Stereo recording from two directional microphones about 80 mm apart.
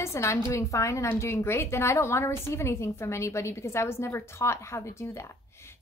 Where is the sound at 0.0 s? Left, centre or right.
Left.